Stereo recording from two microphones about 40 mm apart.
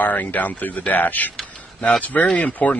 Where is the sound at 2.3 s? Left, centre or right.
Left.